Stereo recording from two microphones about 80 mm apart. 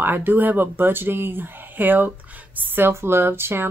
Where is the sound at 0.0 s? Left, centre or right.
Right.